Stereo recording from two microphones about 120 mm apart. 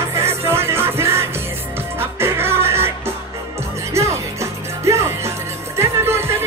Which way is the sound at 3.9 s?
25° right (ahead or behind).